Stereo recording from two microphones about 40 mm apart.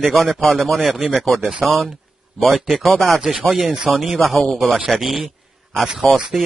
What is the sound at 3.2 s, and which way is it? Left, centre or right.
Speech, centre.